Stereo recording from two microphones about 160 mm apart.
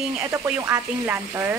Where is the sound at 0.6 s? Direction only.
15° right (ahead or behind).